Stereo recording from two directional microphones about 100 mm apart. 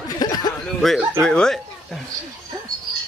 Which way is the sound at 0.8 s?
5° left (ahead or behind).